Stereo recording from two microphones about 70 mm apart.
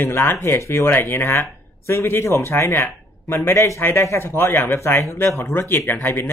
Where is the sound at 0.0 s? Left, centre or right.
Left.